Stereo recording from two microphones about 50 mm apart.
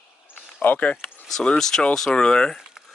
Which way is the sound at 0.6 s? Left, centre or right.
Left.